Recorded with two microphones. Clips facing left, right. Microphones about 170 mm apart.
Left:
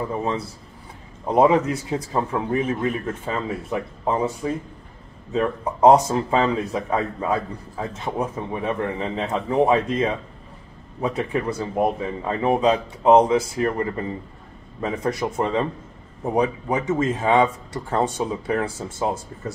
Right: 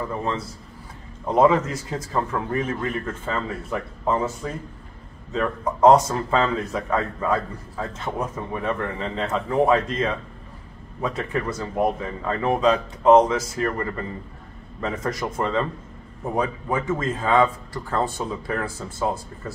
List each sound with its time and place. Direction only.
0.0 s speech: 15° left (ahead or behind)